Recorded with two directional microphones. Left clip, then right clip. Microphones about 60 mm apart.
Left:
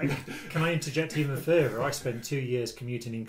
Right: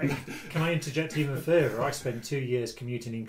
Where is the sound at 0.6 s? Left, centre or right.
Left.